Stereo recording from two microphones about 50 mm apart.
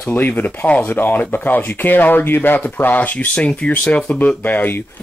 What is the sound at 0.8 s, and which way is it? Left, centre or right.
Speech, left.